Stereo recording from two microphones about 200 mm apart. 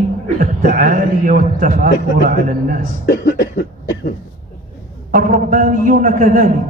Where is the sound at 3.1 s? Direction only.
55° left (ahead or behind).